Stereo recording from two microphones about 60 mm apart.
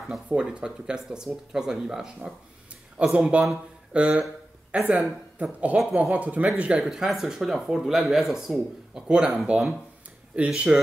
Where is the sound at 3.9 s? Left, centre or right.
Right.